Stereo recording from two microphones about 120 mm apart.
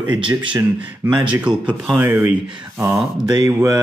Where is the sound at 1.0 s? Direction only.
10° right (ahead or behind).